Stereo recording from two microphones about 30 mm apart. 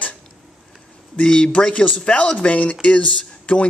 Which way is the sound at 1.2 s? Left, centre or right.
Left.